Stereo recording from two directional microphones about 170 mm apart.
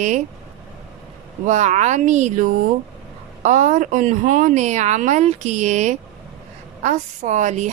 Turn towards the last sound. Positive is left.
turn(degrees=-45)  # may be behind; listen again after turning